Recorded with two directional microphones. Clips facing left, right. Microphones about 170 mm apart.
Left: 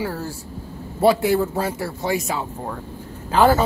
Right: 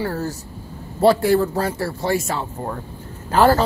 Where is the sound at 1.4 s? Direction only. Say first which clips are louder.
Right 1 dB; 10° left (ahead or behind).